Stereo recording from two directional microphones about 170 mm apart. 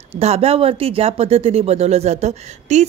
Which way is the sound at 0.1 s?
35° right (ahead or behind).